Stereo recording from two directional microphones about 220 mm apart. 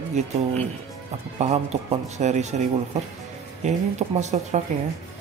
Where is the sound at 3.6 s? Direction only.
30° right (ahead or behind).